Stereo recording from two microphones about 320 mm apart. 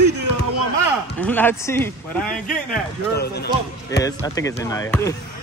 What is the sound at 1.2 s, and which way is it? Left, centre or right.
Speech, centre.